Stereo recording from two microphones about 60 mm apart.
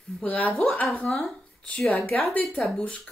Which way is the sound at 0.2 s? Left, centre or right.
Left.